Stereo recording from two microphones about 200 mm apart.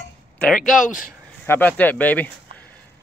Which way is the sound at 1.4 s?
10° left (ahead or behind).